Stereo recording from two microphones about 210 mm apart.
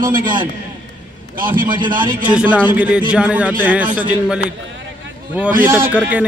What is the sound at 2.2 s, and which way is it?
A man's voice, 5° right (ahead or behind).